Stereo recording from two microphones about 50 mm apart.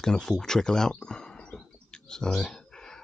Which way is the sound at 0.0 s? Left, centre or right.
Centre.